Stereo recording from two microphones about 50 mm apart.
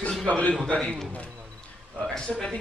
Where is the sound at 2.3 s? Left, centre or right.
Centre.